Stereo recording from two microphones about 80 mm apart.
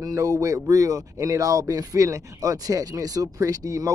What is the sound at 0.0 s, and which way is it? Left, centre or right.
Speech, right.